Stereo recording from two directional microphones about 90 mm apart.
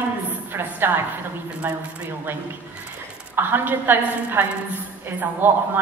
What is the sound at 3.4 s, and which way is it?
A woman's voice, 25° right (ahead or behind).